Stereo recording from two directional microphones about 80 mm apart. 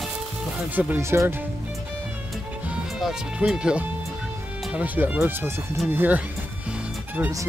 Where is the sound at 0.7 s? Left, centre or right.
Right.